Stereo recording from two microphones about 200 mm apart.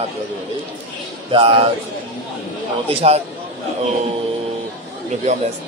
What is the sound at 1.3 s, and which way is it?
Speech, 30° right (ahead or behind).